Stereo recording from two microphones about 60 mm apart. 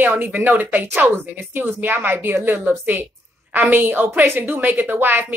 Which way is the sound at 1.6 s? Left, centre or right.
Right.